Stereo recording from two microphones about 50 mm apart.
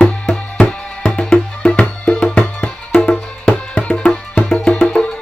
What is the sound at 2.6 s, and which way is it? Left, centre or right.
Music, left.